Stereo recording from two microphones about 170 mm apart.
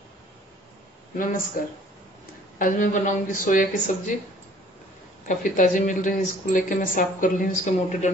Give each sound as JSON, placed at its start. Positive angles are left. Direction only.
{"t": 1.1, "sound": "speech", "side_deg": 50}
{"t": 2.6, "sound": "speech", "side_deg": 50}
{"t": 5.3, "sound": "speech", "side_deg": 50}